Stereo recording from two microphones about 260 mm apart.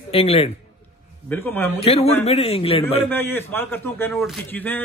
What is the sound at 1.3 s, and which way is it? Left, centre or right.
Speech, centre.